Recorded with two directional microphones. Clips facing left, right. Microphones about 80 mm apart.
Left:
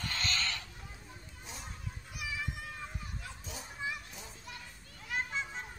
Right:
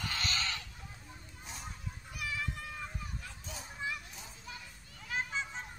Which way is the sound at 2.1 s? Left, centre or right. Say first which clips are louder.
Right 1 dB; centre.